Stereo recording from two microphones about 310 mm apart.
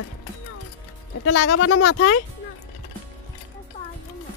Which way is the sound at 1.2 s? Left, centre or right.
Left.